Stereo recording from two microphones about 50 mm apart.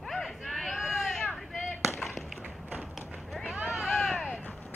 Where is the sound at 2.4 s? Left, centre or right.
Right.